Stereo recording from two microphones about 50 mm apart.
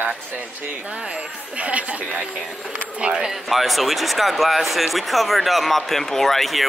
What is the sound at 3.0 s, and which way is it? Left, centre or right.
Speech, centre.